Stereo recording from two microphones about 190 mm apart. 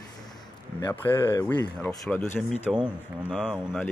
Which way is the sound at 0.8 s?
15° left (ahead or behind).